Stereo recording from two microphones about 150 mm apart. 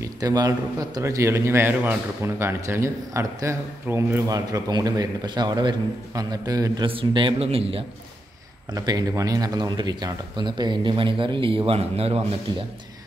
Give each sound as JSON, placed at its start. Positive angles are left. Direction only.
{"t": 0.0, "sound": "a man's voice", "side_deg": -25}
{"t": 6.9, "sound": "a man's voice", "side_deg": -35}
{"t": 8.7, "sound": "a man's voice", "side_deg": -25}